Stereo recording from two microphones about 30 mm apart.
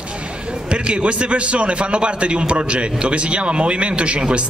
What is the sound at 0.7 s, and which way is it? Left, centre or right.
A man's voice, right.